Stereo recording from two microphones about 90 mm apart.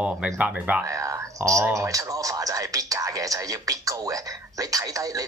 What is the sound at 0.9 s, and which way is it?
Speech, 35° right (ahead or behind).